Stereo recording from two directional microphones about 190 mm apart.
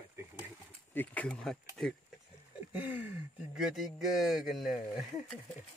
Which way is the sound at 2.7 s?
10° right (ahead or behind).